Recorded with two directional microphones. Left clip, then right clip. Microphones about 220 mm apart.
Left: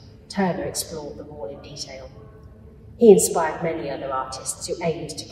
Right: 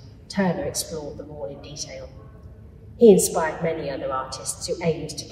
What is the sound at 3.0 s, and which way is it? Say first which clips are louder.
A woman's voice: left 1 dB; centre (ahead or behind).